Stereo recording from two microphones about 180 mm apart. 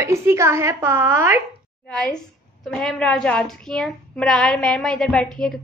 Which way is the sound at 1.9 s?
5° left (ahead or behind).